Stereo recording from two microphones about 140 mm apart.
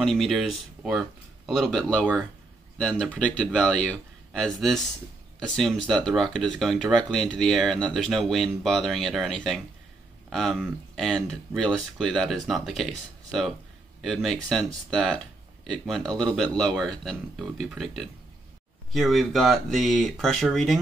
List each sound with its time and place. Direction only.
0.0 s speech: centre (ahead or behind)